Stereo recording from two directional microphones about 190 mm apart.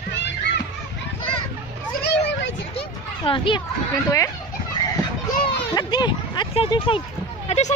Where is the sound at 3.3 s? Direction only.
25° left (ahead or behind).